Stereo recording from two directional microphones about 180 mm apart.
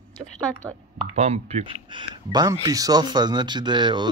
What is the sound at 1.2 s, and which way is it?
Speech, 35° right (ahead or behind).